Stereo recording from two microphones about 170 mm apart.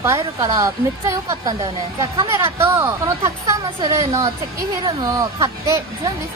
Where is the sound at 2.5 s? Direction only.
15° right (ahead or behind).